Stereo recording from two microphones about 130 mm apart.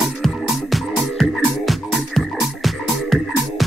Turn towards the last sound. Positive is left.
turn(degrees=0)  # may be behind; listen again after turning